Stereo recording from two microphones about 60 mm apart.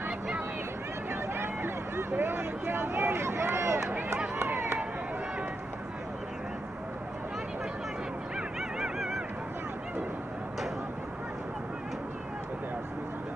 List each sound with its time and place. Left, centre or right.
1.3 s speech: right
4.4 s run: right
8.5 s dog: centre